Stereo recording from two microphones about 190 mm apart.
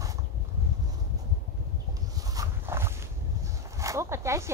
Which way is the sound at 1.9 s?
20° right (ahead or behind).